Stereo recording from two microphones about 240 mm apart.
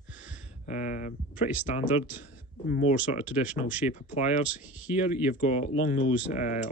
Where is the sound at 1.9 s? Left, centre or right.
Centre.